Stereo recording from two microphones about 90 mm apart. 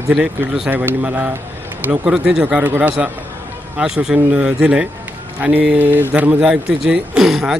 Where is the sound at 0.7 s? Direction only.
20° right (ahead or behind).